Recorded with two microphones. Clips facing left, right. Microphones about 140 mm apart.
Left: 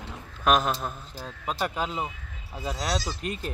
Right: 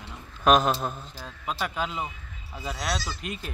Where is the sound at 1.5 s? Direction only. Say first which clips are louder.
Left 1 dB; 40° left (ahead or behind).